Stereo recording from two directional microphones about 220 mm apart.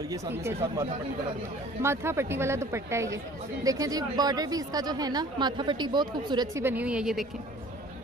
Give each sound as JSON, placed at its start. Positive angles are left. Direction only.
{"t": 0.1, "sound": "a woman's voice", "side_deg": -10}